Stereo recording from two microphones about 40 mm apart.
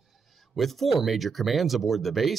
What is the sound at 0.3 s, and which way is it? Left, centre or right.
Speech, centre.